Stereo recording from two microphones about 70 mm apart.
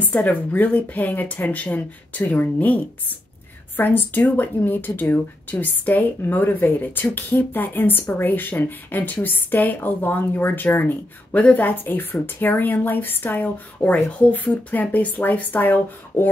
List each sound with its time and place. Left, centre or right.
0.0 s speech: left